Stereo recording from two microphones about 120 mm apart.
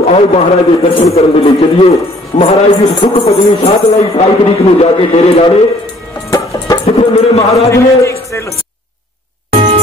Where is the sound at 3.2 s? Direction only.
60° left (ahead or behind).